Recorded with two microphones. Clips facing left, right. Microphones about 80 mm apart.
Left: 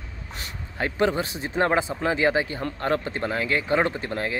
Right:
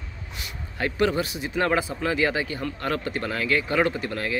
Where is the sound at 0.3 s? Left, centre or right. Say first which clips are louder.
Left 1 dB; left.